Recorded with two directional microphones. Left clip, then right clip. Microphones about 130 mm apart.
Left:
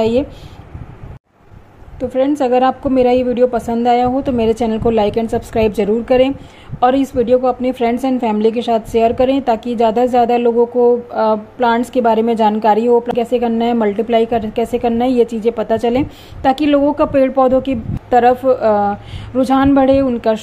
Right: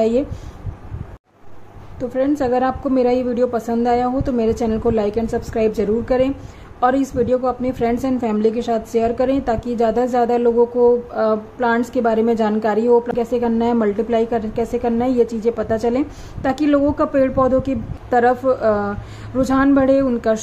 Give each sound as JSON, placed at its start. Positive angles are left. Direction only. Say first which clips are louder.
{"t": 2.3, "sound": "a woman's voice", "louder": "left 5 dB", "side_deg": 10}
{"t": 14.6, "sound": "a woman's voice", "louder": "left 4 dB", "side_deg": 25}